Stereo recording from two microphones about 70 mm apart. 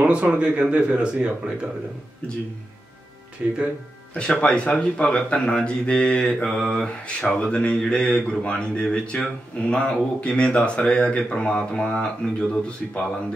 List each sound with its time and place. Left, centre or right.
0.1 s speech: centre
3.4 s speech: right
4.4 s speech: centre